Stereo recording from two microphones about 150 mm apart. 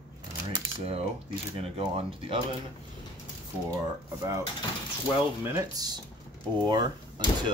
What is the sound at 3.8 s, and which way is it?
Speech, 20° right (ahead or behind).